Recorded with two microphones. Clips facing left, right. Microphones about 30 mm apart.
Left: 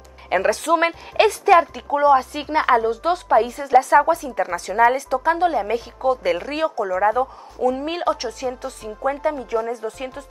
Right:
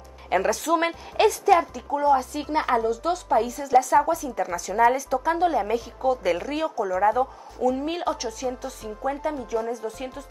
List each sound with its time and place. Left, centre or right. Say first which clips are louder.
0.3 s a woman's voice: left 4 dB; left
2.4 s speech: left 5 dB; left
2.7 s a woman's voice: left 6 dB; left
7.0 s a woman's voice: left 2 dB; centre; by 10.0 s left